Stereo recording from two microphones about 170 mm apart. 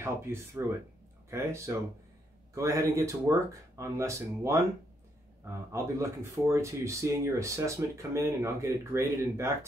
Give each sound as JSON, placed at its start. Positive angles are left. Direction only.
{"t": 0.0, "sound": "speech", "side_deg": -15}
{"t": 5.7, "sound": "speech", "side_deg": -15}